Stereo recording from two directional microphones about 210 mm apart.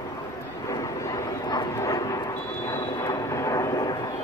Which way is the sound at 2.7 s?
15° left (ahead or behind).